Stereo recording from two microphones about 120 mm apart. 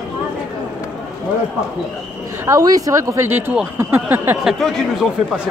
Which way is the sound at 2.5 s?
30° right (ahead or behind).